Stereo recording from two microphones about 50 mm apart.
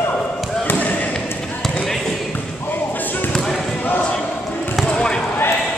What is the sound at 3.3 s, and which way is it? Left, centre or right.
Basketball bounce, centre.